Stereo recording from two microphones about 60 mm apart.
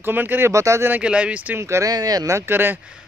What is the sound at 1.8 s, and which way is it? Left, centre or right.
Speech, right.